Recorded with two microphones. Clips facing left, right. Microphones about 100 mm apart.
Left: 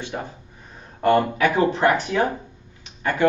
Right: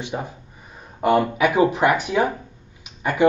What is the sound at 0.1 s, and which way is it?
Speech, 10° right (ahead or behind).